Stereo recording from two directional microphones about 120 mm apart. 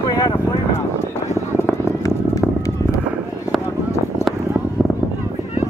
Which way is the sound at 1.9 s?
25° left (ahead or behind).